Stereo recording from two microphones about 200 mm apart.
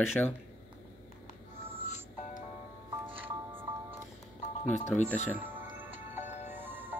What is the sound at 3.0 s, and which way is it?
Music, 25° right (ahead or behind).